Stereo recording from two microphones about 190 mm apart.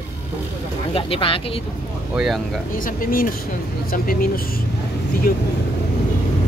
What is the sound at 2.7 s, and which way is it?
Speech, 45° left (ahead or behind).